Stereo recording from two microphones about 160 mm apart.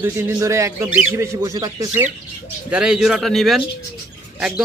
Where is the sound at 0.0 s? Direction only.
15° right (ahead or behind).